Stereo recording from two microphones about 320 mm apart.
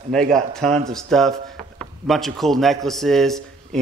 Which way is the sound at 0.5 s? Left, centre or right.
Centre.